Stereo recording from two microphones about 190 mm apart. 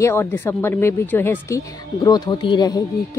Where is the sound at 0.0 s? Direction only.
15° left (ahead or behind).